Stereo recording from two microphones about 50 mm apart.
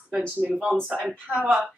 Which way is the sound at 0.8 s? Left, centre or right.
Right.